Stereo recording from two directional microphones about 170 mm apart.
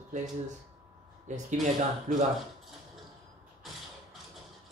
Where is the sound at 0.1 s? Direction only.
45° right (ahead or behind).